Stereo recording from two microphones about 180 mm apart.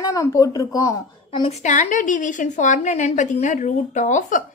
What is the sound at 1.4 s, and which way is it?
A woman's voice, 40° left (ahead or behind).